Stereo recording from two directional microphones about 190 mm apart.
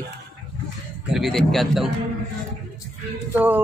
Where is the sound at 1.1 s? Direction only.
Centre (ahead or behind).